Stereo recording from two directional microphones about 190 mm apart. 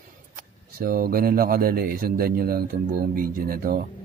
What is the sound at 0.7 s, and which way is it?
Speech, 50° right (ahead or behind).